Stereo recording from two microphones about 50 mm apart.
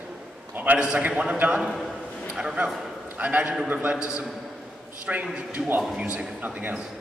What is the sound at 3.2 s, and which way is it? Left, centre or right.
Speech, right.